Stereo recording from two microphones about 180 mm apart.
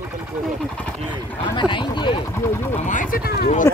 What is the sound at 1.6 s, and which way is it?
Speech, 25° left (ahead or behind).